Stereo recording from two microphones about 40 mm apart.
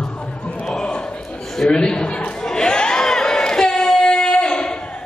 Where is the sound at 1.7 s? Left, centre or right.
Left.